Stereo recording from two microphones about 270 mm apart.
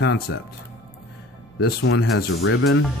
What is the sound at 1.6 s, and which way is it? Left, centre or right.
Speech, left.